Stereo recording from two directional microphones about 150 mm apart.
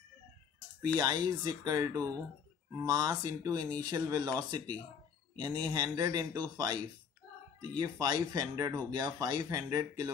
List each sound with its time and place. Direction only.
0.9 s speech: 25° right (ahead or behind)